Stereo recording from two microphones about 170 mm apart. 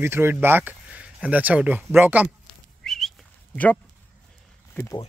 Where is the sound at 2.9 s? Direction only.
Centre (ahead or behind).